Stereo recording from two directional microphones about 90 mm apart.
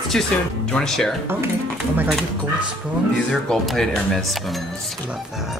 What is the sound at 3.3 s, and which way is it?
Speech, 5° left (ahead or behind).